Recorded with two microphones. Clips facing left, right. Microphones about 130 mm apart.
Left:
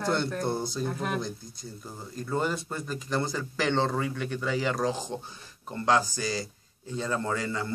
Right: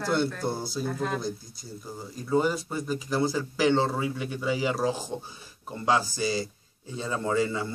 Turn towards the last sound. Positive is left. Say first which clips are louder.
# right 3 dB
turn(degrees=-15)  # may be behind; listen again after turning